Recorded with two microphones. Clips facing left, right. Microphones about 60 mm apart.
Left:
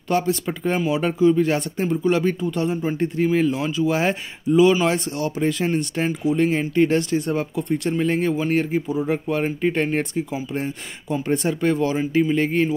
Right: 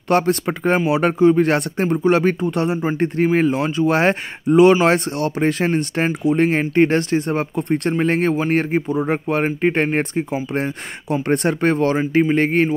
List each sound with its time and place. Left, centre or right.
0.1 s speech: right
3.3 s speech: right
3.5 s speech: right